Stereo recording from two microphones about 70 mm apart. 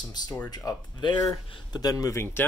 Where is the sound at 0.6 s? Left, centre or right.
Left.